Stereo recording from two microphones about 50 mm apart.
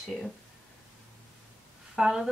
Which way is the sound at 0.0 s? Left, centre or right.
Centre.